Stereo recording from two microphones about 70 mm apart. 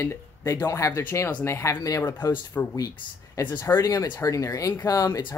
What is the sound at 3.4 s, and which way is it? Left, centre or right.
Speech, left.